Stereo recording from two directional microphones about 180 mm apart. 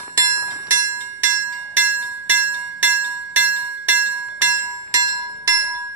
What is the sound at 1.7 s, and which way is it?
Glockenspiel, 10° right (ahead or behind).